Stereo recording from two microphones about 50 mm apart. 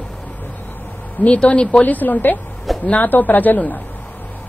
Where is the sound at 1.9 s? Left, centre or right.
Left.